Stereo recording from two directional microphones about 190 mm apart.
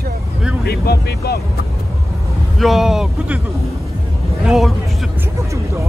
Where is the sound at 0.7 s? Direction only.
55° left (ahead or behind).